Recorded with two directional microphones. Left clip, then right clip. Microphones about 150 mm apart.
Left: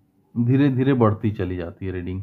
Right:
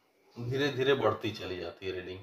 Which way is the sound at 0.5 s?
35° left (ahead or behind).